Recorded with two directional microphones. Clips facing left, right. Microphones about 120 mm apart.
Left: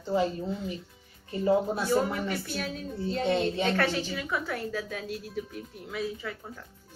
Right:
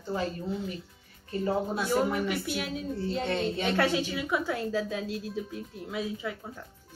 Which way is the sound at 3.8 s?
15° right (ahead or behind).